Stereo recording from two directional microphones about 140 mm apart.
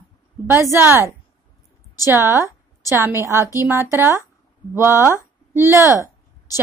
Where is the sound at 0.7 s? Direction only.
20° right (ahead or behind).